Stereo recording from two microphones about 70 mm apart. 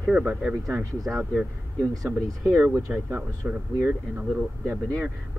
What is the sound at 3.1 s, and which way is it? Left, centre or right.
Speech, right.